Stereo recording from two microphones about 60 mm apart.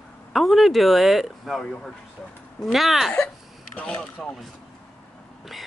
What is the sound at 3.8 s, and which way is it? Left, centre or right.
Speech, centre.